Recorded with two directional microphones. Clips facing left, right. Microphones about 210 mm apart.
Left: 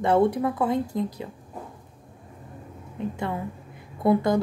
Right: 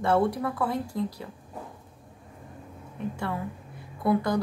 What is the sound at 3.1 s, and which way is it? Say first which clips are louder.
Speech: left 2 dB; 20° left (ahead or behind).